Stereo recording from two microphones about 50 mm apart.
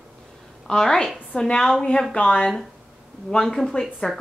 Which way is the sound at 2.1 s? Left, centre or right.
Left.